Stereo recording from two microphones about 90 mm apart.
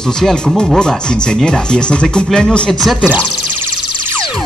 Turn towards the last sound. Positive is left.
turn(degrees=-25)  # may be behind; listen again after turning